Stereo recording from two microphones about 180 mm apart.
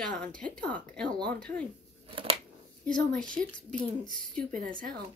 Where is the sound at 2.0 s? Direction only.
30° right (ahead or behind).